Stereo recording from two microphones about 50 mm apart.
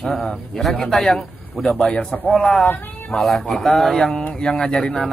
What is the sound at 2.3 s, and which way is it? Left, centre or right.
Speech, centre.